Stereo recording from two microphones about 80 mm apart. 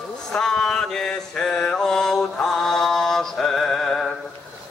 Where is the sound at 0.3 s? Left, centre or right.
Centre.